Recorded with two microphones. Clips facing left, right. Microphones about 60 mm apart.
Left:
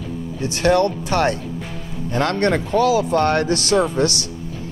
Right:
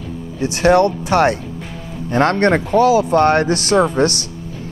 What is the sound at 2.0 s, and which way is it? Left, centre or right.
Speech, right.